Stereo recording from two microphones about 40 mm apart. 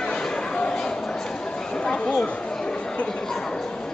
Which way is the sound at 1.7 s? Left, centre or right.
Left.